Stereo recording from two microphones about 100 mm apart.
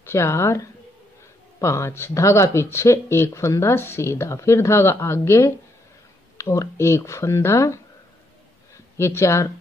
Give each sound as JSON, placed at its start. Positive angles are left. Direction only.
{"t": 0.0, "sound": "speech", "side_deg": 25}
{"t": 8.9, "sound": "speech", "side_deg": 25}